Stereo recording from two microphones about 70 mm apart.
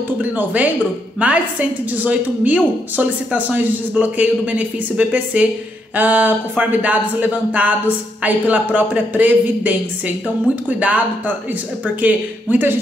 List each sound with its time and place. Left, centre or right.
0.2 s a woman's voice: right